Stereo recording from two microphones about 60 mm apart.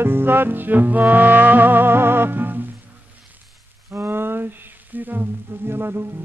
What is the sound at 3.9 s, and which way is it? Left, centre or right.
Music, right.